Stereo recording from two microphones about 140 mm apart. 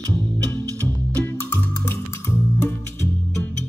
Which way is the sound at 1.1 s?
15° left (ahead or behind).